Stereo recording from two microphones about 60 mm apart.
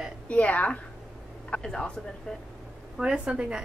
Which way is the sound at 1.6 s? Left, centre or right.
Centre.